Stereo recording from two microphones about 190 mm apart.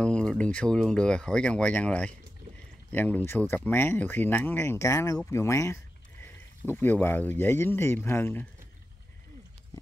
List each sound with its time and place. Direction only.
0.0 s speech: 5° left (ahead or behind)